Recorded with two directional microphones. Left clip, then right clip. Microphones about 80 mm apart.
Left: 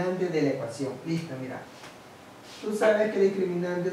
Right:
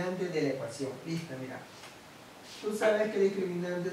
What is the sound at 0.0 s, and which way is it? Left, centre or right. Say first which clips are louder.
Speech: left 5 dB; centre.